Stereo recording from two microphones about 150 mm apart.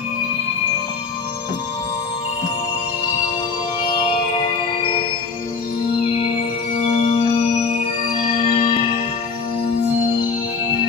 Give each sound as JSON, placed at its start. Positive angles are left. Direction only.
{"t": 3.8, "sound": "music", "side_deg": 35}
{"t": 6.7, "sound": "music", "side_deg": 40}